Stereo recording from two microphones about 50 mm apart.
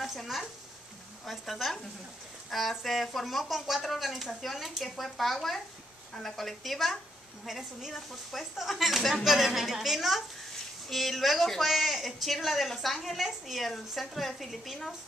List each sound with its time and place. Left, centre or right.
0.0 s speech: centre